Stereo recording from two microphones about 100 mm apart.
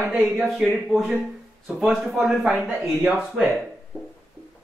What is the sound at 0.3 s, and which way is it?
Speech, 5° right (ahead or behind).